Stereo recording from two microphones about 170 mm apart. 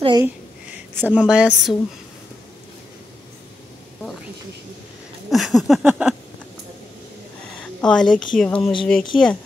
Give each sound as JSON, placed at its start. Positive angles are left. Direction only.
{"t": 0.0, "sound": "speech", "side_deg": -25}
{"t": 0.9, "sound": "a woman's voice", "side_deg": -10}
{"t": 5.3, "sound": "a sound", "side_deg": 0}
{"t": 7.8, "sound": "a woman's voice", "side_deg": 5}